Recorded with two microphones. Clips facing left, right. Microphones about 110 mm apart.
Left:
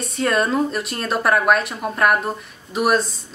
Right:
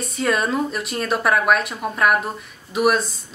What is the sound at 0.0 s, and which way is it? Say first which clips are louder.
Speech: left 1 dB; centre (ahead or behind).